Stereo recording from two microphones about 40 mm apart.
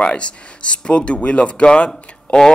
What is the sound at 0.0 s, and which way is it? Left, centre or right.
Speech, left.